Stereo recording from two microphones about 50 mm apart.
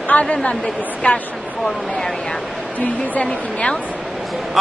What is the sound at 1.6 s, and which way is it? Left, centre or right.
Speech, centre.